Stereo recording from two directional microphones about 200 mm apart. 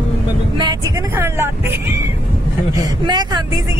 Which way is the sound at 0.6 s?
20° right (ahead or behind).